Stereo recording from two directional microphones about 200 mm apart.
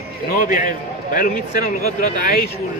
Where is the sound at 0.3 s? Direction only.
40° left (ahead or behind).